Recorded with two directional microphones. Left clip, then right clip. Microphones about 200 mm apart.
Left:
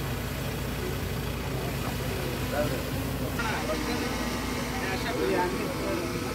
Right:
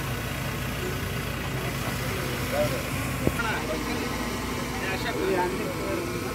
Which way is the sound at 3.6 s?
Centre (ahead or behind).